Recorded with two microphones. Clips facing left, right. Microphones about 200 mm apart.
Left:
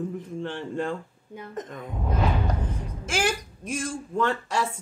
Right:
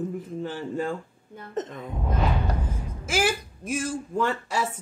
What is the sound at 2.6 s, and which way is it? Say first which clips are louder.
Speech: left 1 dB; 5° right (ahead or behind).